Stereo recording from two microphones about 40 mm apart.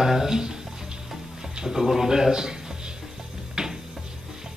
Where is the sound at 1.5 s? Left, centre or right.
Centre.